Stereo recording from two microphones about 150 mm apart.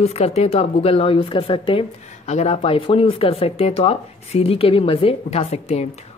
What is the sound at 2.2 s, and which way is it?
Speech, 50° left (ahead or behind).